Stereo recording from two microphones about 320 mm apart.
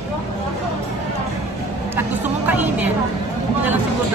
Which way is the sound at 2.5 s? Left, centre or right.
Centre.